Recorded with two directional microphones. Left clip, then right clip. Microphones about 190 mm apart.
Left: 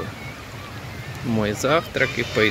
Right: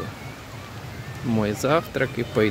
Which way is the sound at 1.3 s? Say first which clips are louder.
Left 1 dB; 25° right (ahead or behind).